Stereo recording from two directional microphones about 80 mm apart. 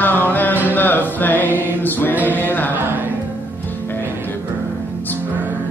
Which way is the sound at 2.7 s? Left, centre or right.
Right.